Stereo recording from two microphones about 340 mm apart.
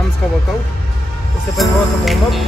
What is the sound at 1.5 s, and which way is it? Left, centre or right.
Music, centre.